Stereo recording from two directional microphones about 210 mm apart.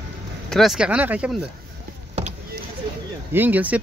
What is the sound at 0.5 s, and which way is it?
Speech, centre (ahead or behind).